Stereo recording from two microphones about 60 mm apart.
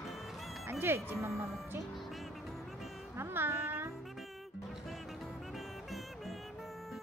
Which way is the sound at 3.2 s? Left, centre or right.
Right.